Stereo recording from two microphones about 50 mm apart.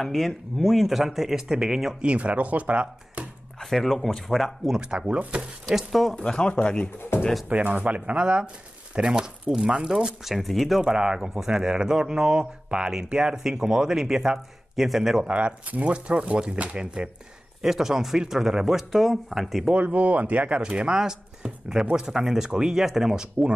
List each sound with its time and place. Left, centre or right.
0.0 s speech: centre
2.0 s speech: right
3.5 s speech: centre
4.6 s speech: centre
5.7 s speech: centre
6.1 s speech: centre
7.1 s speech: left
7.4 s speech: right; by 10.8 s centre
10.8 s speech: centre
15.2 s speech: right
17.6 s speech: centre
19.7 s speech: right; by 23.2 s centre